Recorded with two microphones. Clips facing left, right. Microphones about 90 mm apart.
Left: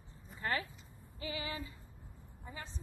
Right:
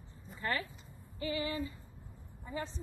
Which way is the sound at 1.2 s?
10° left (ahead or behind).